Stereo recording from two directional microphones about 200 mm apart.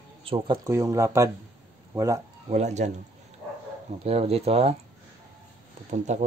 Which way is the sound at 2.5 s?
35° right (ahead or behind).